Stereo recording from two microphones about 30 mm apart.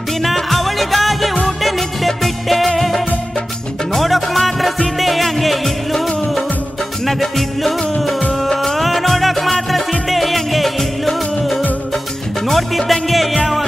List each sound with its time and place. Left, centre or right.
0.2 s music: centre
5.9 s music of bollywood: centre
7.1 s music: centre